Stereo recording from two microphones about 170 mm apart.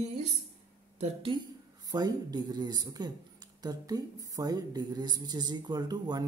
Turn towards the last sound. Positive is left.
turn(degrees=-25)  # may be behind; listen again after turning